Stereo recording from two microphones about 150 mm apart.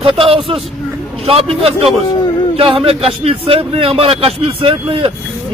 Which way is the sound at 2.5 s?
40° right (ahead or behind).